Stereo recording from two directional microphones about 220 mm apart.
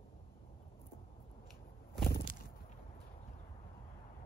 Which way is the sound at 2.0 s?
40° left (ahead or behind).